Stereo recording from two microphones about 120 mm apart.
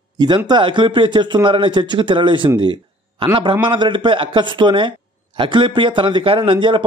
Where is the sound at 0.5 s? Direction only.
40° right (ahead or behind).